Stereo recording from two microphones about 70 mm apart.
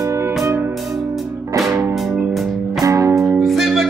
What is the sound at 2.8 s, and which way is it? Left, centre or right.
Music, right.